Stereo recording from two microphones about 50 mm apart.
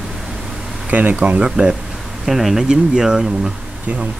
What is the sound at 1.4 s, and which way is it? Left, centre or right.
Speech, centre.